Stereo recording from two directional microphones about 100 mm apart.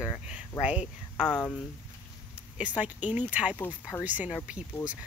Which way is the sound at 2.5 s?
15° right (ahead or behind).